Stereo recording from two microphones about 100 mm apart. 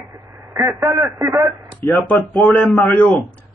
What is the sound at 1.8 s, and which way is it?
Speech, 15° left (ahead or behind).